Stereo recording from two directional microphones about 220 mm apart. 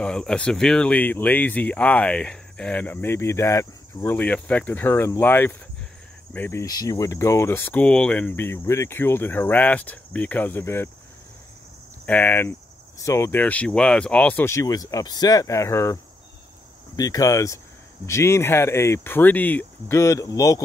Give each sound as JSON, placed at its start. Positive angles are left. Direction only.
{"t": 0.0, "sound": "speech", "side_deg": 5}
{"t": 12.1, "sound": "speech", "side_deg": 10}